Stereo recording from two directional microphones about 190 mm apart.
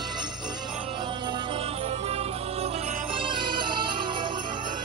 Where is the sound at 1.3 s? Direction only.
30° right (ahead or behind).